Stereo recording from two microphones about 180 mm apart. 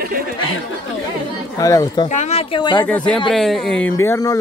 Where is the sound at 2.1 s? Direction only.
40° left (ahead or behind).